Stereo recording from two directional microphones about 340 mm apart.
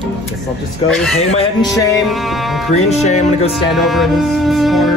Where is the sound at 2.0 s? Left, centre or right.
Centre.